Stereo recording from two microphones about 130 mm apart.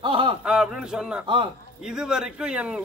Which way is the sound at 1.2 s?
40° right (ahead or behind).